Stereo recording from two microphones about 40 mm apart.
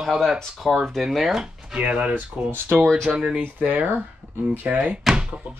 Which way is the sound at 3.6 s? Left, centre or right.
Right.